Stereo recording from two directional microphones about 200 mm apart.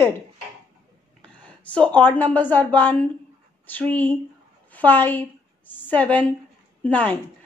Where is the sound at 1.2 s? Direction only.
5° left (ahead or behind).